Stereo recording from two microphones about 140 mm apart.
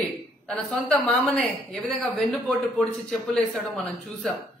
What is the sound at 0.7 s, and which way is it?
A woman's voice, 5° left (ahead or behind).